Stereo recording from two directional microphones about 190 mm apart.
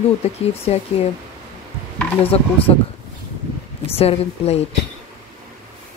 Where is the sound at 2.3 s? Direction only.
30° left (ahead or behind).